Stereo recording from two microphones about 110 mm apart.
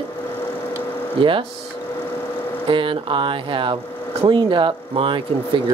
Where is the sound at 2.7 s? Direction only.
50° right (ahead or behind).